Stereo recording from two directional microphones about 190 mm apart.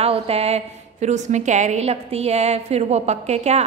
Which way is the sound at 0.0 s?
30° right (ahead or behind).